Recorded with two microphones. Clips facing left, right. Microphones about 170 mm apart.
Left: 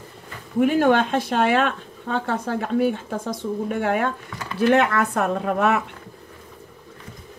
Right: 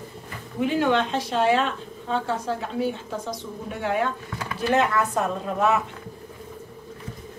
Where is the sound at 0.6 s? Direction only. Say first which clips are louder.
Left 4 dB; 50° left (ahead or behind).